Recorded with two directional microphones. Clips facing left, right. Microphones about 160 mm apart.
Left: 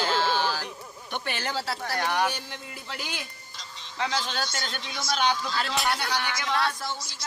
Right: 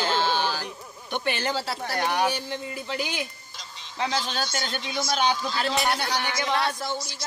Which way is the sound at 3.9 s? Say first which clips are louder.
Right 2 dB; 25° right (ahead or behind).